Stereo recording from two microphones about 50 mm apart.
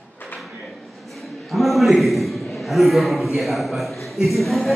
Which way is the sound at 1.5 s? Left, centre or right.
Centre.